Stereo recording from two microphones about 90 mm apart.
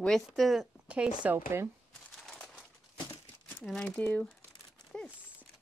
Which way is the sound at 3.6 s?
10° left (ahead or behind).